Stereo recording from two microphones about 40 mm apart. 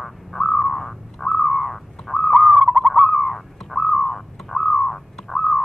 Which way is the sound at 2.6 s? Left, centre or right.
Centre.